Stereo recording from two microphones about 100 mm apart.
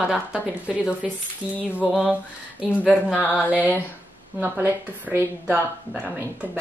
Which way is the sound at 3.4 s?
15° right (ahead or behind).